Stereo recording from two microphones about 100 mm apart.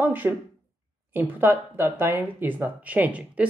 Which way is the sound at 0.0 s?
20° right (ahead or behind).